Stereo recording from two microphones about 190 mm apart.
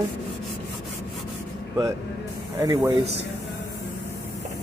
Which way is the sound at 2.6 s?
15° right (ahead or behind).